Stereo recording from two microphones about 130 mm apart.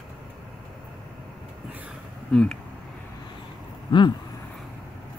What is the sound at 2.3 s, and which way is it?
Speech, 5° left (ahead or behind).